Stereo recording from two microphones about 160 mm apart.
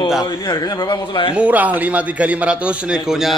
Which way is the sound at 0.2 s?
25° left (ahead or behind).